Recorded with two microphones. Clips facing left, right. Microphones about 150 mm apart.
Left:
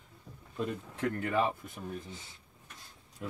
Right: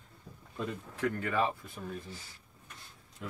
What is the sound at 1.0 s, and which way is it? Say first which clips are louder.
Speech: even; 20° left (ahead or behind).